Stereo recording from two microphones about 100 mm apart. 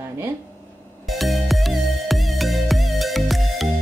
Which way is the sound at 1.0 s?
Centre (ahead or behind).